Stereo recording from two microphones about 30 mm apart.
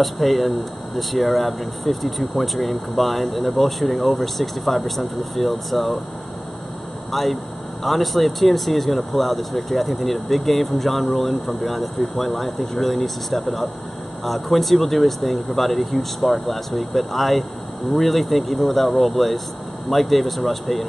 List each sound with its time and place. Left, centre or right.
0.0 s speech: centre
7.1 s speech: centre